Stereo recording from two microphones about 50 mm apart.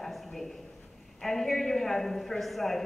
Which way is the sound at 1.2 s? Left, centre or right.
Centre.